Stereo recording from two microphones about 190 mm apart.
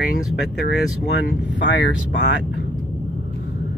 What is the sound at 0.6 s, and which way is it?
Speech, 60° left (ahead or behind).